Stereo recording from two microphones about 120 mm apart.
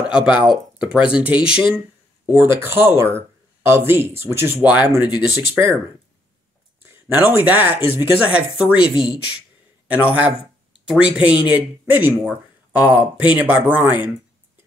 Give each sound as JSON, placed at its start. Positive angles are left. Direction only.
{"t": 0.0, "sound": "speech", "side_deg": -10}
{"t": 0.3, "sound": "speech", "side_deg": 45}
{"t": 2.2, "sound": "speech", "side_deg": -15}
{"t": 6.9, "sound": "speech", "side_deg": -15}